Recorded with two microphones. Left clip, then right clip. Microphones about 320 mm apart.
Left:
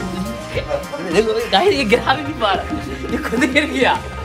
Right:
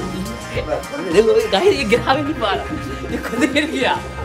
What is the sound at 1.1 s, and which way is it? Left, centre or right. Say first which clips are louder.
Speech: right 2 dB; centre.